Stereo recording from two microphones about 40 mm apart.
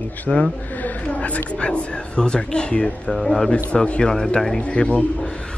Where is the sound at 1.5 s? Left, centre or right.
Left.